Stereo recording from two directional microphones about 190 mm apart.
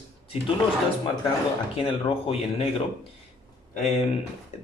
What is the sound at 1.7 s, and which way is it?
Speech, 30° left (ahead or behind).